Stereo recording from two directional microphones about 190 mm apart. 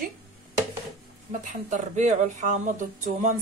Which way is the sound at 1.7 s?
40° right (ahead or behind).